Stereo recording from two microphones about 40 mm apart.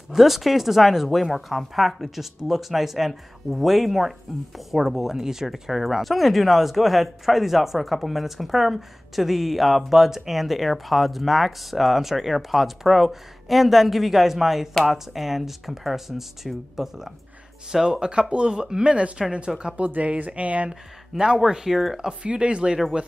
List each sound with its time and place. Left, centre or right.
0.1 s speech: centre; by 19.7 s right
19.8 s speech: right
21.4 s speech: centre
22.2 s speech: right